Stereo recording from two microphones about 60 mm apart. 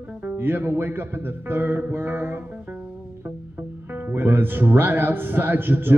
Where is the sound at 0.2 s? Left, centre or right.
Right.